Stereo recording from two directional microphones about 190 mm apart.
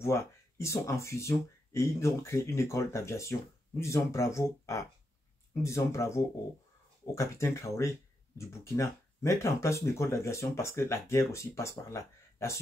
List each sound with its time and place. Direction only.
0.0 s speech: 15° left (ahead or behind)